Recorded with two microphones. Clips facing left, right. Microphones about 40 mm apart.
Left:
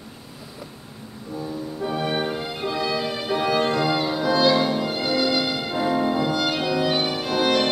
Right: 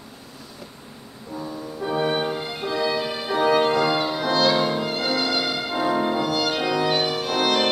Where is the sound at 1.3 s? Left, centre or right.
Centre.